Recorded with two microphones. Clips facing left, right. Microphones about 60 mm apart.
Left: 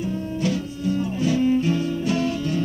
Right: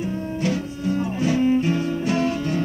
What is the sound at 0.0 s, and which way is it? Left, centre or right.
Music, right.